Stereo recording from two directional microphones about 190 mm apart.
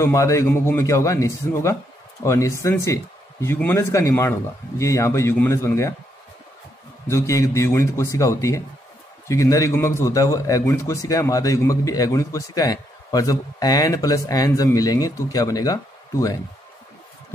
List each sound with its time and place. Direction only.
0.0 s speech: 15° left (ahead or behind)
7.1 s speech: 15° left (ahead or behind)